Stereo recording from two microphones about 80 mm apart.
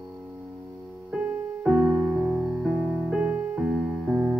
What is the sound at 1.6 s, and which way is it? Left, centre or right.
Music, centre.